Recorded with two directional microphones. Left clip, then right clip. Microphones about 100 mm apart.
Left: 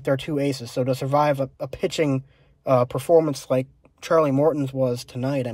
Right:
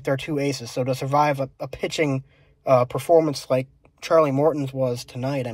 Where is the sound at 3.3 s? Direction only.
20° left (ahead or behind).